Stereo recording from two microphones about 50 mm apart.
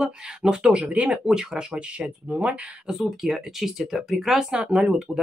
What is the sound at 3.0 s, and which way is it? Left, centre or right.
Speech, centre.